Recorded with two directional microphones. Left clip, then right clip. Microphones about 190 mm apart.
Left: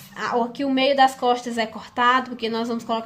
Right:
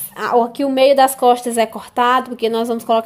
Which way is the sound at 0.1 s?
35° right (ahead or behind).